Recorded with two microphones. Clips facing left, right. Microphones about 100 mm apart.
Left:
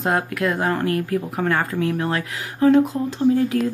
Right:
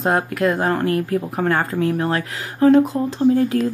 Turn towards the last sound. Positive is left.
turn(degrees=-50)  # may be behind; listen again after turning